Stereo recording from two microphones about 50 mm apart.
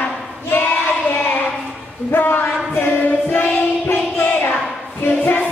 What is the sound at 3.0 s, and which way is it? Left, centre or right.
Music, left.